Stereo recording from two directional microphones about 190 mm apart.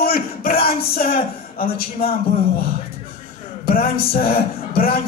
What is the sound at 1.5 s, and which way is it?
Speech, 50° left (ahead or behind).